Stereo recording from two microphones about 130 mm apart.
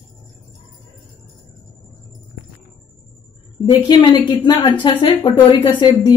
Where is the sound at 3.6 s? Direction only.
35° left (ahead or behind).